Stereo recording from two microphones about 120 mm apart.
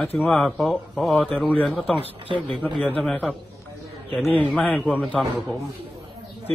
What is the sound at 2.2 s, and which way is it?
Speech, 45° right (ahead or behind).